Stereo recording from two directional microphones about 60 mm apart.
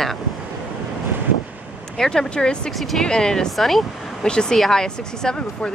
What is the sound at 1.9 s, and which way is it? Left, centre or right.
Speech, centre.